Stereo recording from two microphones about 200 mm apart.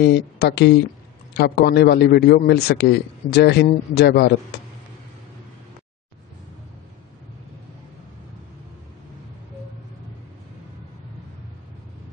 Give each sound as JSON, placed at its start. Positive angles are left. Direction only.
{"t": 0.0, "sound": "a man's voice", "side_deg": 55}